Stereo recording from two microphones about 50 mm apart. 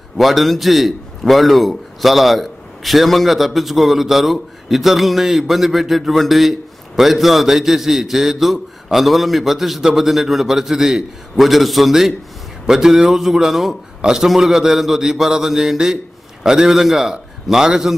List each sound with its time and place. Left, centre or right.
0.2 s a man's voice: centre